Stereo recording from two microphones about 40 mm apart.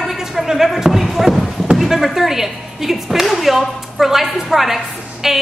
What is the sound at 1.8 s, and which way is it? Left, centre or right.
A woman's voice, centre.